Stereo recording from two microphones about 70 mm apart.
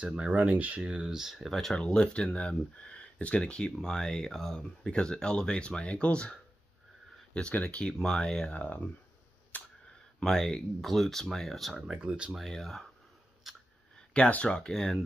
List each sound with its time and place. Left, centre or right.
0.0 s speech: centre
7.3 s speech: centre
8.5 s speech: left
9.5 s a sound: left
10.2 s speech: centre
11.7 s speech: centre
12.3 s speech: centre
14.1 s speech: centre